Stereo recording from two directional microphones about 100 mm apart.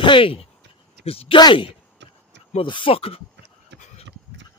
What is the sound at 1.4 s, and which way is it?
Speech, 55° left (ahead or behind).